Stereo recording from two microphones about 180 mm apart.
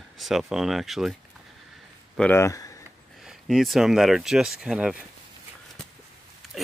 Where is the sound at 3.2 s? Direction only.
Centre (ahead or behind).